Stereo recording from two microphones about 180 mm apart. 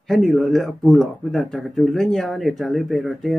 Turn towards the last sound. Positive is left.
turn(degrees=0)  # may be behind; listen again after turning